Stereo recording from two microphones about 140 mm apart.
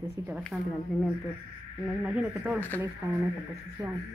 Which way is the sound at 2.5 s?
15° left (ahead or behind).